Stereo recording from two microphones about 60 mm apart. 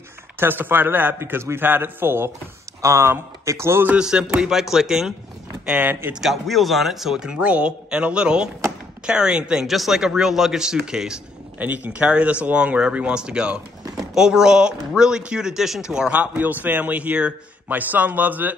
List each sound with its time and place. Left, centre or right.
0.4 s a man's voice: right
4.0 s speech: centre
5.8 s a man's voice: right
6.2 s speech: centre
7.3 s speech: right
11.5 s a man's voice: right; by 15.8 s centre
16.1 s a man's voice: right